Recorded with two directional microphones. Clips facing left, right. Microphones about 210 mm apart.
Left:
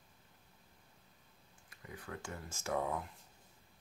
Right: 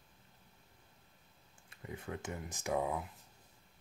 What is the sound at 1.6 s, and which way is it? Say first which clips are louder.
Speech: right 4 dB; 25° right (ahead or behind).